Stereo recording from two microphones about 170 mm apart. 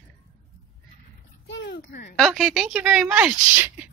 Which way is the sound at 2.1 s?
Centre (ahead or behind).